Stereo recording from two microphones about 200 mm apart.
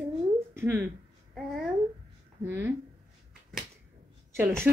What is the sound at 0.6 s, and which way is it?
Speech, 10° right (ahead or behind).